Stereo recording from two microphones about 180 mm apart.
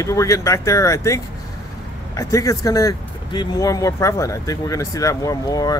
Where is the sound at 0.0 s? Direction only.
15° left (ahead or behind).